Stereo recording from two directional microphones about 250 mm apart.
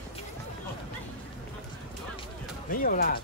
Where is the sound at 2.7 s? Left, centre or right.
Left.